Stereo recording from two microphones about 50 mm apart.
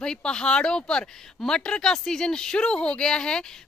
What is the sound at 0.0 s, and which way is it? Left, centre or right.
Speech, centre.